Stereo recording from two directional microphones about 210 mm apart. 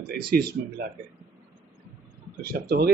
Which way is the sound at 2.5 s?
45° right (ahead or behind).